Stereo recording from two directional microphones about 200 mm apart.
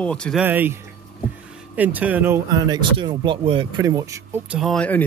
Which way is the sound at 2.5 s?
20° right (ahead or behind).